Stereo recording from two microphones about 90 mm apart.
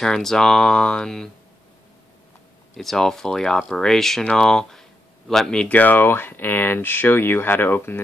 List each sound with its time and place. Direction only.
0.0 s speech: 5° left (ahead or behind)
2.7 s speech: centre (ahead or behind); by 8.0 s 25° left (ahead or behind)